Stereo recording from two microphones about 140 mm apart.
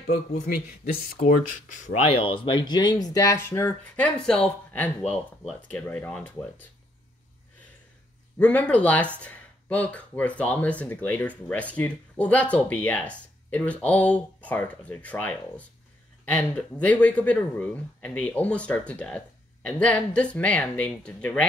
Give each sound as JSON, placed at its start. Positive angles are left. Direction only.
{"t": 1.1, "sound": "speech", "side_deg": 70}
{"t": 2.0, "sound": "speech", "side_deg": 40}
{"t": 8.4, "sound": "speech", "side_deg": 10}